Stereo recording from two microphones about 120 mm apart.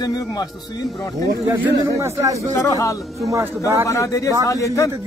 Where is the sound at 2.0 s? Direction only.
25° right (ahead or behind).